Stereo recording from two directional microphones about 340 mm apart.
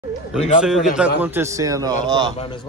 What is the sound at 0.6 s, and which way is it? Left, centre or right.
A man's voice, centre.